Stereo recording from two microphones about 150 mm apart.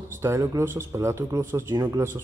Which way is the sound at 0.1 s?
20° right (ahead or behind).